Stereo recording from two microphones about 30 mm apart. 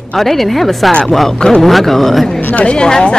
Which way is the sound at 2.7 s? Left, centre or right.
Left.